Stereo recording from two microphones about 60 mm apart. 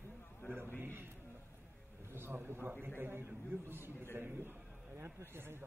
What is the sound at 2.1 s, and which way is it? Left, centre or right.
A man's voice, right.